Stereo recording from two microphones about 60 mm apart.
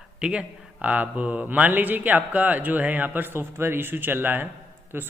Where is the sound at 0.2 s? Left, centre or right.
Centre.